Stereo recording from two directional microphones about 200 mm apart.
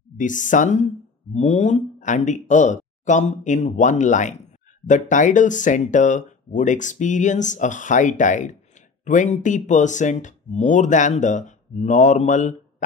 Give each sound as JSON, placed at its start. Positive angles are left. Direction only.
{"t": 0.2, "sound": "speech", "side_deg": 40}